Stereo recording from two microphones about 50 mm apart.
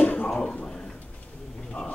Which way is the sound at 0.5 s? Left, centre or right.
Centre.